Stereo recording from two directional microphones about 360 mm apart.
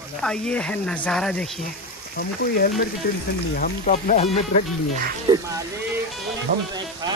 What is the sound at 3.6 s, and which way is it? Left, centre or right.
Speech, left.